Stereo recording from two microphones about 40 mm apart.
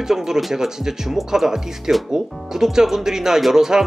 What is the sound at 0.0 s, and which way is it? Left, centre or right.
Speech, centre.